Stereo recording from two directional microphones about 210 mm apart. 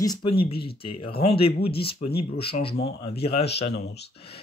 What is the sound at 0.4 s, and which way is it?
Speech, 50° left (ahead or behind).